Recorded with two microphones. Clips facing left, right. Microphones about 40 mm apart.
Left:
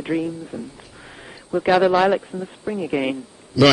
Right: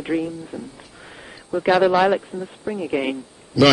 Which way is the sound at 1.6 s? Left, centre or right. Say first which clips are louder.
Even; centre.